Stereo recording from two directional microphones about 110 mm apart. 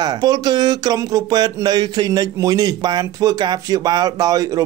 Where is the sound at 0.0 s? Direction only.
40° right (ahead or behind).